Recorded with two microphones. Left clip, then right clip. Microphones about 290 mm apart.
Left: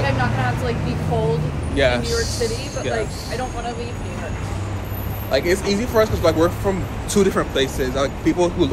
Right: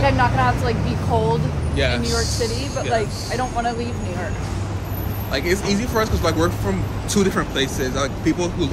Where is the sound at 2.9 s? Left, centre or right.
Right.